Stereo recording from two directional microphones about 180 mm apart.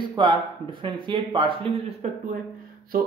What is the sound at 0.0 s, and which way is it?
A man's voice, 25° right (ahead or behind).